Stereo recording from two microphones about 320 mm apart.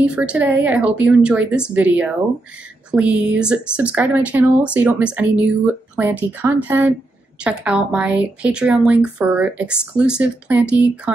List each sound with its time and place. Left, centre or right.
0.0 s speech: centre
6.4 s speech: centre